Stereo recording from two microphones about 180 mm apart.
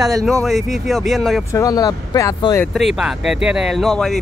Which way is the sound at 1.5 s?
20° left (ahead or behind).